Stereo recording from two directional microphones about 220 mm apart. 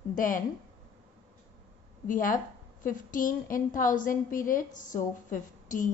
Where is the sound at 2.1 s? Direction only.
40° left (ahead or behind).